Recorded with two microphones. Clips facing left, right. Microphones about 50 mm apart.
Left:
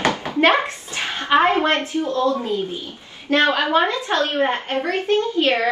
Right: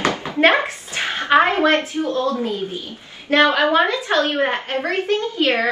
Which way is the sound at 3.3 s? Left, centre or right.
Right.